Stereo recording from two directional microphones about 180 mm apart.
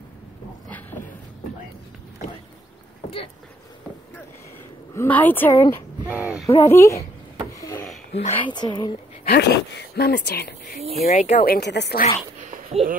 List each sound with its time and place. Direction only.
0.7 s a sound: 10° left (ahead or behind)
4.9 s a woman's voice: 10° left (ahead or behind)
6.1 s speech: 5° right (ahead or behind)
6.6 s a woman's voice: 15° left (ahead or behind)
7.5 s a sound: 20° left (ahead or behind)
8.1 s a woman's voice: 35° left (ahead or behind)
8.5 s a woman's voice: 25° left (ahead or behind)
9.2 s speech: 60° left (ahead or behind)
11.1 s speech: 40° left (ahead or behind)
11.4 s speech: 60° left (ahead or behind)
12.4 s a sound: 45° right (ahead or behind)